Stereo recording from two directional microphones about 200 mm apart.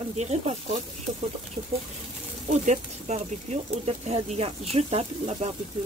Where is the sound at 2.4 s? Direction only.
35° right (ahead or behind).